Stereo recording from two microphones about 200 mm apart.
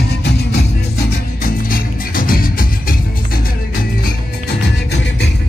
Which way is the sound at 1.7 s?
45° left (ahead or behind).